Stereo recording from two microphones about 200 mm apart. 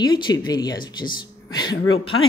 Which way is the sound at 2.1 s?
90° left.